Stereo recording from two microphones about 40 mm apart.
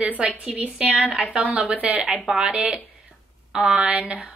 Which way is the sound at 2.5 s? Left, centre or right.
Right.